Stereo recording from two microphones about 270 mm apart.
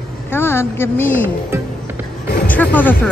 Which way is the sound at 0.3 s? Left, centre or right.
Centre.